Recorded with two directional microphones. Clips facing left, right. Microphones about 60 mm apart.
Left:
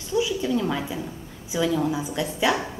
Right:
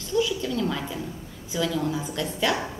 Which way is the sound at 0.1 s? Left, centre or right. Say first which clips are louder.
Left 2 dB; centre.